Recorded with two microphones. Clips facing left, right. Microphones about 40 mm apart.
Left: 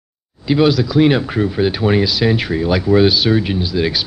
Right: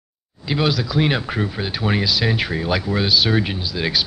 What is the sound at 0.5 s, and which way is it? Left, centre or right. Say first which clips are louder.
Speech: left 7 dB; centre.